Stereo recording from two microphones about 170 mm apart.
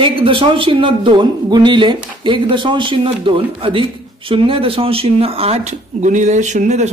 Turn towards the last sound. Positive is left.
turn(degrees=-40)  # may be behind; listen again after turning